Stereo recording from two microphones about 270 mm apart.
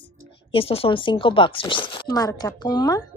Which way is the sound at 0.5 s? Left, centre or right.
Left.